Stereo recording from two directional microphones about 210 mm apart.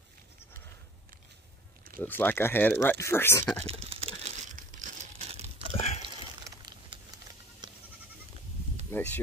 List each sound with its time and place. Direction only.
2.0 s speech: 10° left (ahead or behind)
3.6 s crumpling: 25° right (ahead or behind)
5.8 s a sound: 30° left (ahead or behind)
6.0 s a sound: 25° right (ahead or behind)
7.6 s goat: 20° right (ahead or behind)
8.9 s speech: 10° left (ahead or behind)